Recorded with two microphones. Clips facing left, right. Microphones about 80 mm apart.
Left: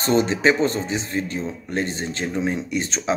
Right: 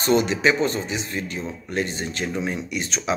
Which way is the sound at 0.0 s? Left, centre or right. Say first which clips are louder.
Left 1 dB; left.